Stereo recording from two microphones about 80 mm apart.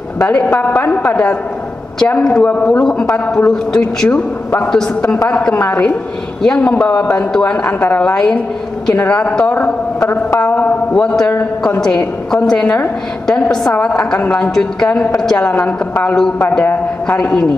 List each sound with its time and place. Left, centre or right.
0.3 s a woman's voice: centre
5.6 s a woman's voice: centre
6.4 s a woman's voice: centre
12.4 s a woman's voice: centre
17.2 s a woman's voice: centre